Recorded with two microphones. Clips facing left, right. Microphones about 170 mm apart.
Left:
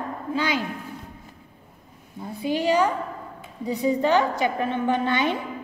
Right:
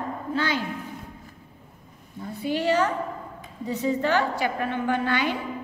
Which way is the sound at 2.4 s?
15° left (ahead or behind).